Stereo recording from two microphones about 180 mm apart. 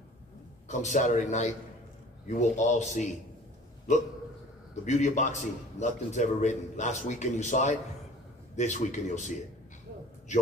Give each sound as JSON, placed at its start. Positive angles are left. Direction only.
{"t": 0.7, "sound": "a man's voice", "side_deg": 45}
{"t": 4.8, "sound": "a man's voice", "side_deg": 40}